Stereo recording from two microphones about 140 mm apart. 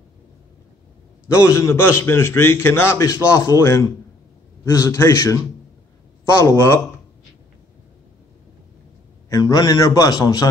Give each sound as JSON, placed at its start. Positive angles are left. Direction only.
{"t": 1.3, "sound": "a man's voice", "side_deg": 20}
{"t": 9.3, "sound": "a man's voice", "side_deg": 30}